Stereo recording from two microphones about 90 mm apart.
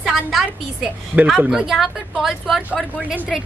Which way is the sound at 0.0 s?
Centre (ahead or behind).